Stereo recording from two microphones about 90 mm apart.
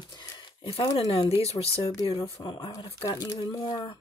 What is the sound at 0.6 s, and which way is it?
Speech, 80° left.